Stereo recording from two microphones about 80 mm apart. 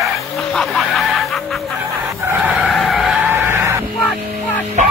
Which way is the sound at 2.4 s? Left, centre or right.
Centre.